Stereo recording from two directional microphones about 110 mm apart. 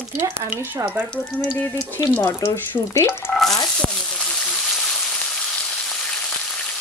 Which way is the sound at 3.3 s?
5° left (ahead or behind).